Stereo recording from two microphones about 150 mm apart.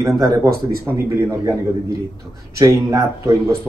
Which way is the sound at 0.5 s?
90° right.